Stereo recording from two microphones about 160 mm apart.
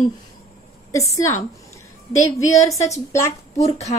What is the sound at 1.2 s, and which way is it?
A woman's voice, 20° left (ahead or behind).